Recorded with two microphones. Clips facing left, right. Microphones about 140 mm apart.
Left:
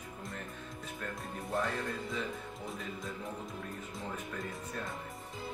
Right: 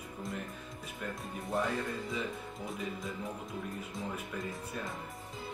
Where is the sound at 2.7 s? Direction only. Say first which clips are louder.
Right 3 dB; centre (ahead or behind).